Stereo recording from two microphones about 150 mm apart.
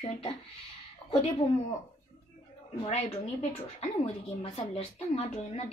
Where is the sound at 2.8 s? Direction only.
45° left (ahead or behind).